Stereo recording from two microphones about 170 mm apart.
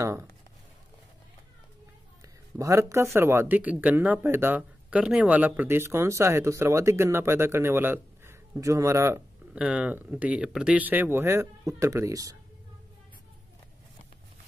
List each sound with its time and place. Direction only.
0.0 s speech: 15° right (ahead or behind)
2.2 s speech: 20° right (ahead or behind)